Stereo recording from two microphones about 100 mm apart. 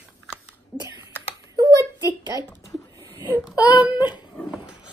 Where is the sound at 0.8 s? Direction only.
50° left (ahead or behind).